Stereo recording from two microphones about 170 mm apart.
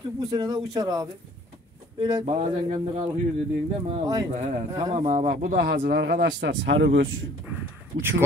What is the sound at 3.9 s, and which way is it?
Speech, 20° right (ahead or behind).